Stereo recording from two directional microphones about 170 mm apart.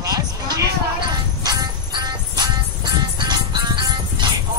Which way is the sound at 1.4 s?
25° right (ahead or behind).